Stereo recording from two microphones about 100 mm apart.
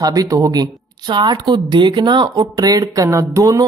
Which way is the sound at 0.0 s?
35° right (ahead or behind).